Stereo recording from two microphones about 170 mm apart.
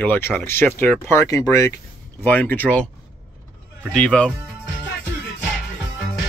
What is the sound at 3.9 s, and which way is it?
Speech, 5° left (ahead or behind).